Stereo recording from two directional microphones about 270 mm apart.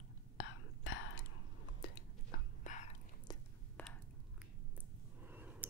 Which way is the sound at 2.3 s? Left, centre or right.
Left.